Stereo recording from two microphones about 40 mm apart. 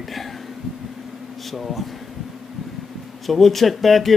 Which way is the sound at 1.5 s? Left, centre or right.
Centre.